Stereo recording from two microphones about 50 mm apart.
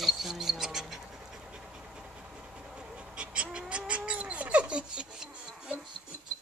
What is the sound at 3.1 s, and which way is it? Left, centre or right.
Cat, right.